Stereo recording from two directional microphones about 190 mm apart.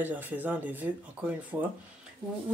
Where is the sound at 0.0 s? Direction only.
10° right (ahead or behind).